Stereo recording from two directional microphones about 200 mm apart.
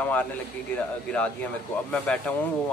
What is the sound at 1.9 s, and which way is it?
Speech, 5° left (ahead or behind).